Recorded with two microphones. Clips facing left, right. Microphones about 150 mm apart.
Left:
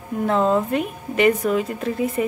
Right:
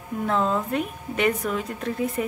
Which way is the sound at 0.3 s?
5° left (ahead or behind).